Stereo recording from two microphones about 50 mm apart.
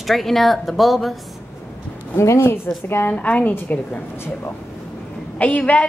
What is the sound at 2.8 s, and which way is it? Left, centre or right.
Speech, left.